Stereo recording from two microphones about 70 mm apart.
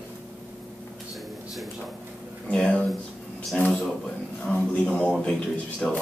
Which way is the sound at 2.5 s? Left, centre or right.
Centre.